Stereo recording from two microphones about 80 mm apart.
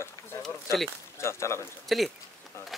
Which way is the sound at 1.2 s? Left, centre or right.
Left.